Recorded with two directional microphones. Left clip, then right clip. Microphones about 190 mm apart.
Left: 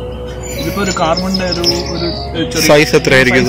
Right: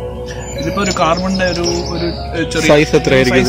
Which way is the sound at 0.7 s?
Centre (ahead or behind).